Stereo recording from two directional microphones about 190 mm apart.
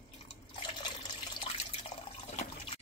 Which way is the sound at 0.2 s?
25° left (ahead or behind).